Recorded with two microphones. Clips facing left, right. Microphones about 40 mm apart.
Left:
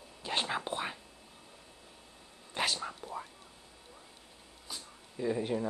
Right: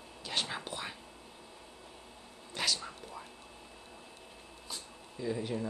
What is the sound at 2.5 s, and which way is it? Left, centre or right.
Whispering, left.